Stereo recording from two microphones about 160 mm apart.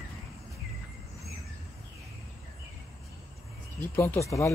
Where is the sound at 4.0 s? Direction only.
15° left (ahead or behind).